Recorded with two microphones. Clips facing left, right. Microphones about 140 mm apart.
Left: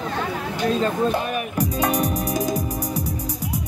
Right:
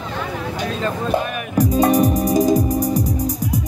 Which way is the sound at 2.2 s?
35° right (ahead or behind).